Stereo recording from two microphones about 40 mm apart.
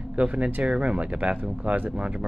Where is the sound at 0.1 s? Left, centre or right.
Right.